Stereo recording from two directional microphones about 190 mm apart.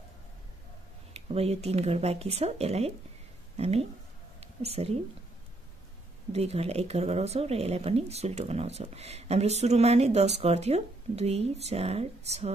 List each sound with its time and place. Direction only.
1.1 s speech: 35° right (ahead or behind)
6.3 s speech: 35° right (ahead or behind)